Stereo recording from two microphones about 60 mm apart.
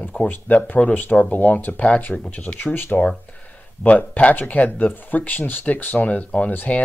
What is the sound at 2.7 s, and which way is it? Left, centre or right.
Speech, left.